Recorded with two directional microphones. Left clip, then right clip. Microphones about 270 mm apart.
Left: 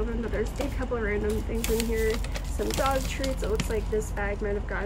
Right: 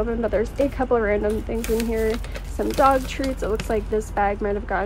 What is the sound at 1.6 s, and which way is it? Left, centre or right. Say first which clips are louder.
Speech: right 4 dB; centre.